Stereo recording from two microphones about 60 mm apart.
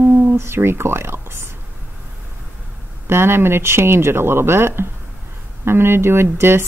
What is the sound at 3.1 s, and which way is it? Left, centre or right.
Speech, right.